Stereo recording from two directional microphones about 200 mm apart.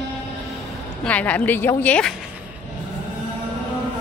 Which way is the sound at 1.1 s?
5° left (ahead or behind).